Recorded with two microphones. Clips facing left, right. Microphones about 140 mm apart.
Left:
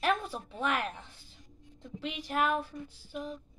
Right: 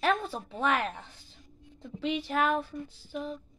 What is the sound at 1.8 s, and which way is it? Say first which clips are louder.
Speech: right 7 dB; 5° left (ahead or behind).